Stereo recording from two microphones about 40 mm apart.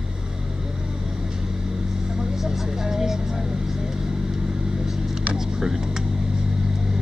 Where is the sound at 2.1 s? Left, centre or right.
Centre.